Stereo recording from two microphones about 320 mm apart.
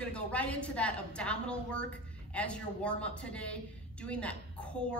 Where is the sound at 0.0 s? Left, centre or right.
Centre.